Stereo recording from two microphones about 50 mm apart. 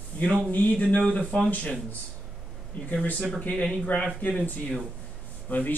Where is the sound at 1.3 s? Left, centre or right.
Left.